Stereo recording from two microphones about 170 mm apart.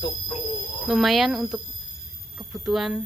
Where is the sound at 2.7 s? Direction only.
Centre (ahead or behind).